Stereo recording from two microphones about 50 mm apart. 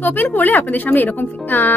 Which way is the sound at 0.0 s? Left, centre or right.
Left.